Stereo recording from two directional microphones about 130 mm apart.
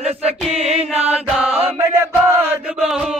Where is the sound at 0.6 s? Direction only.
50° right (ahead or behind).